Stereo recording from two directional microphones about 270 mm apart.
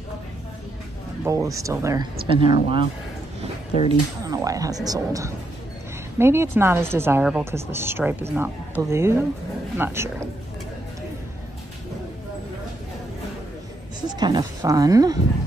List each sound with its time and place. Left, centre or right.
1.2 s a woman's voice: centre
3.7 s speech: left
4.2 s a woman's voice: centre
14.0 s a woman's voice: centre